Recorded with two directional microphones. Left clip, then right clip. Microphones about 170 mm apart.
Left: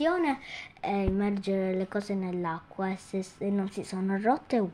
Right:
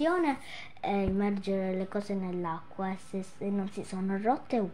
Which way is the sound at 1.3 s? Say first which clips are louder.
Left 2 dB; 20° left (ahead or behind).